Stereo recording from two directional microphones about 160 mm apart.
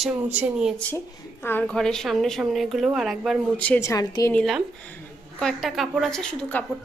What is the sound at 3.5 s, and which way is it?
Speech, 10° left (ahead or behind).